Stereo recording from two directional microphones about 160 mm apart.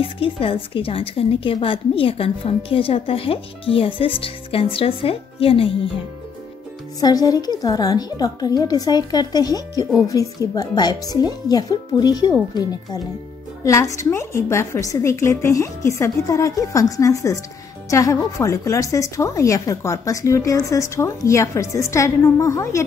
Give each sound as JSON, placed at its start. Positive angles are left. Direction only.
{"t": 0.0, "sound": "a woman's voice", "side_deg": 35}
{"t": 7.0, "sound": "speech", "side_deg": 25}